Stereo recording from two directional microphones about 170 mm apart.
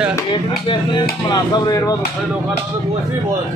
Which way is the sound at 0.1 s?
25° left (ahead or behind).